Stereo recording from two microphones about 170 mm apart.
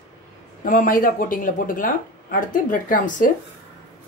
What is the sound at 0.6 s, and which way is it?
Speech, 55° left (ahead or behind).